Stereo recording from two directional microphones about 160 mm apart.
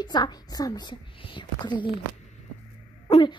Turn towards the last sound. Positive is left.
turn(degrees=30)  # may be behind; listen again after turning